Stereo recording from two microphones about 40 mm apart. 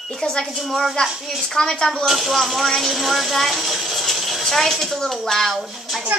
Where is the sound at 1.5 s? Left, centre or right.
Centre.